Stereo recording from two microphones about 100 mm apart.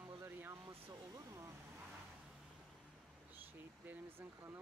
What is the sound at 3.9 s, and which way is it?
Speech, 25° right (ahead or behind).